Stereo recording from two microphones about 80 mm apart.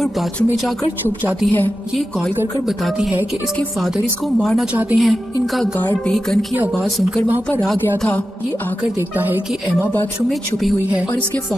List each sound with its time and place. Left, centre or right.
2.0 s a woman's voice: centre
3.8 s a woman's voice: centre
6.7 s a woman's voice: centre
9.1 s speech: right